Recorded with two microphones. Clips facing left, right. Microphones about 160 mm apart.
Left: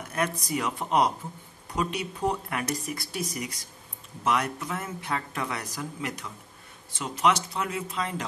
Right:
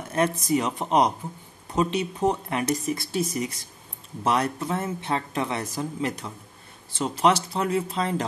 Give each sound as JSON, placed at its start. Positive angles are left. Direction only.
{"t": 0.1, "sound": "speech", "side_deg": -25}